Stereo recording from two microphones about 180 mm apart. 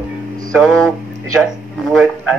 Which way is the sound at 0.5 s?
Centre (ahead or behind).